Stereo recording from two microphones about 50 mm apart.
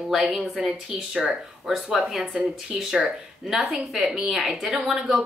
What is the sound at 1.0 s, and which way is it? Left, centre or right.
A woman's voice, centre.